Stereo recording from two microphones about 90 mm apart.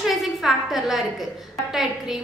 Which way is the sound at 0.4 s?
5° right (ahead or behind).